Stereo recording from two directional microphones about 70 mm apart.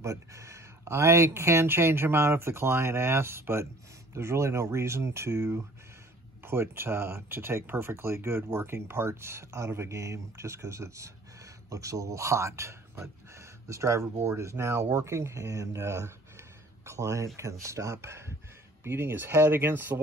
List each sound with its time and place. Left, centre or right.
0.0 s speech: right